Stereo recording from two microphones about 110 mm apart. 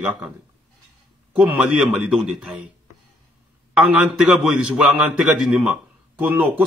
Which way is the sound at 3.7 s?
5° right (ahead or behind).